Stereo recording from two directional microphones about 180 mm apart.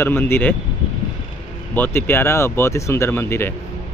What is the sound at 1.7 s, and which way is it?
Speech, 10° left (ahead or behind).